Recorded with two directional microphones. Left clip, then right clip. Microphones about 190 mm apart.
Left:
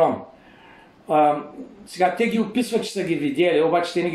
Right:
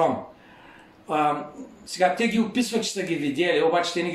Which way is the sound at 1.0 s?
15° right (ahead or behind).